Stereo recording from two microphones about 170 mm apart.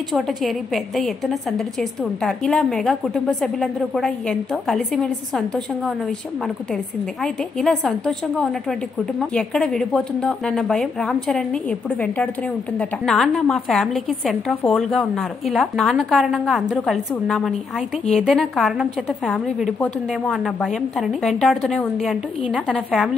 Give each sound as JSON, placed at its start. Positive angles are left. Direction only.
{"t": 0.1, "sound": "a woman's voice", "side_deg": 0}
{"t": 7.6, "sound": "a woman's voice", "side_deg": 0}